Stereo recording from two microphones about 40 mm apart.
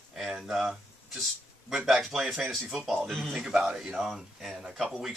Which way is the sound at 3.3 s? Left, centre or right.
Centre.